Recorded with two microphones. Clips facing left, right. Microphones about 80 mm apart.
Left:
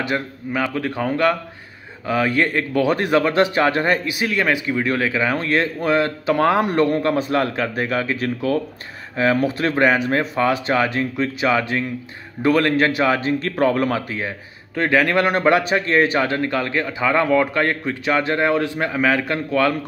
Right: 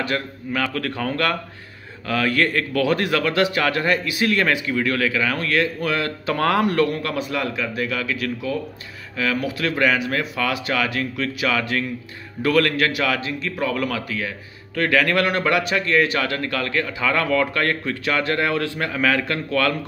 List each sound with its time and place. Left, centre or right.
0.0 s speech: centre; by 13.7 s left
13.7 s speech: left